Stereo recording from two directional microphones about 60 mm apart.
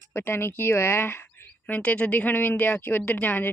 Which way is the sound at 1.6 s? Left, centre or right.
Left.